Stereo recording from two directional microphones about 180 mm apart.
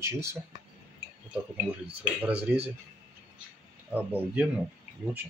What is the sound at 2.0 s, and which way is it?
Speech, 5° right (ahead or behind).